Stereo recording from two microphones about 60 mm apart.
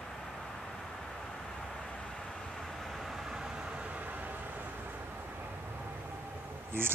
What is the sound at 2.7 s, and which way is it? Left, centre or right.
Vehicle, centre.